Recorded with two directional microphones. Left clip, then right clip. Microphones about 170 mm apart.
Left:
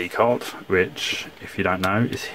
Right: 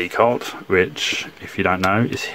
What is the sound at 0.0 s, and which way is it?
Speech, 15° right (ahead or behind).